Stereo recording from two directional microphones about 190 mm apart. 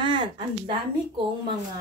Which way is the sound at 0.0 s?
25° right (ahead or behind).